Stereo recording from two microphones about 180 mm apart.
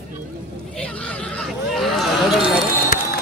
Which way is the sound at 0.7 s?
5° left (ahead or behind).